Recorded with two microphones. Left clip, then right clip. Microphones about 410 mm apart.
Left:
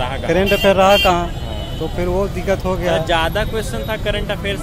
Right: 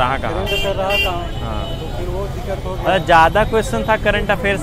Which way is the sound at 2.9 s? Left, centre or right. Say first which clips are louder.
Right 9 dB; centre.